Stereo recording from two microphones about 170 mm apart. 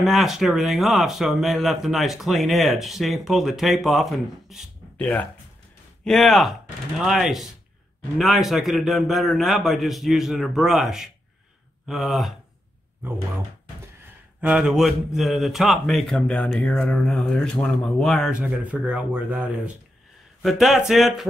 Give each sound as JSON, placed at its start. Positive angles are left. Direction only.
{"t": 0.0, "sound": "speech", "side_deg": 0}
{"t": 14.4, "sound": "speech", "side_deg": -5}